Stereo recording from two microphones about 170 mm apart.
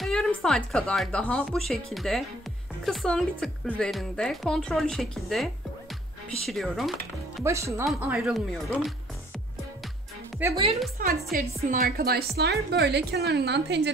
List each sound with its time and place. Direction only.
0.0 s speech: 5° left (ahead or behind)
7.4 s speech: 15° right (ahead or behind)
7.8 s speech: 5° right (ahead or behind)
10.4 s speech: 10° right (ahead or behind)
11.0 s a woman's voice: 55° right (ahead or behind); by 13.9 s 85° right